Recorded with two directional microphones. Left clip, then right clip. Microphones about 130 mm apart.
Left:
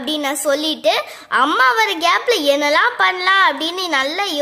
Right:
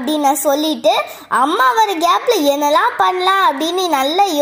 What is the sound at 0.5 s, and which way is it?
A child's voice, centre (ahead or behind).